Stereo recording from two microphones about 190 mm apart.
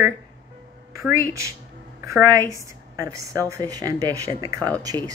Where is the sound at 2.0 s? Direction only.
15° right (ahead or behind).